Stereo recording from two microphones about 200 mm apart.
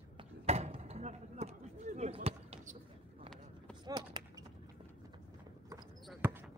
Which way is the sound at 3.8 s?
20° right (ahead or behind).